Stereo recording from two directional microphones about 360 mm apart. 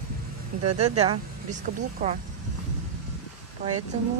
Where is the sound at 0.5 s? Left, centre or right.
Right.